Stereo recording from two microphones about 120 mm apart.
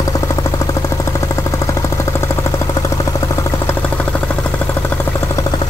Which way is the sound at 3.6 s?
15° left (ahead or behind).